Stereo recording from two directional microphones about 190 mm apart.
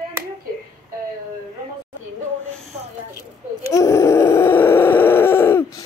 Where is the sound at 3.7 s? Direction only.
15° left (ahead or behind).